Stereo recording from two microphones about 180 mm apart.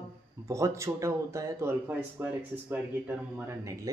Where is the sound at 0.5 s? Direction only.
15° right (ahead or behind).